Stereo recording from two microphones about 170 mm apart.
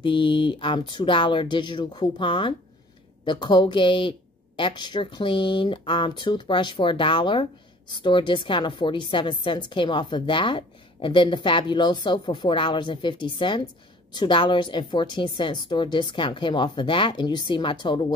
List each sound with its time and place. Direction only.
0.0 s a woman's voice: 30° left (ahead or behind)